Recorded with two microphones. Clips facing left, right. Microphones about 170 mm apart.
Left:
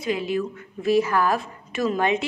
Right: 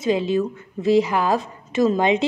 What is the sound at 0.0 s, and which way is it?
A woman's voice, 25° right (ahead or behind).